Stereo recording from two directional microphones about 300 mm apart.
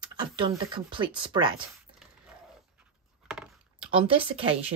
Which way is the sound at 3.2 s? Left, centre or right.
Centre.